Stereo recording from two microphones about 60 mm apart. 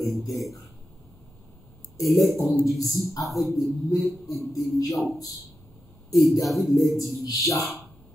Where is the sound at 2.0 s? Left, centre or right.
Centre.